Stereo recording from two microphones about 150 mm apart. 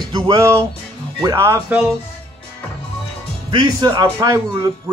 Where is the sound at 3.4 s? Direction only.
30° right (ahead or behind).